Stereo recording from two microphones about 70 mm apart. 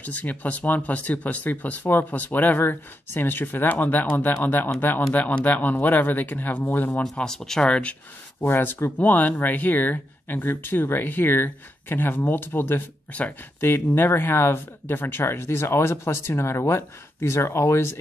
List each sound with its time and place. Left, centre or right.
0.0 s speech: left
7.0 s speech: centre
8.4 s speech: left